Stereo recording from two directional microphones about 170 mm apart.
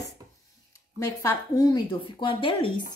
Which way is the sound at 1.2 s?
20° left (ahead or behind).